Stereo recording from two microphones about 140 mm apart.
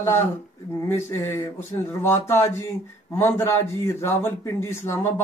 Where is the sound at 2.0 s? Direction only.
15° left (ahead or behind).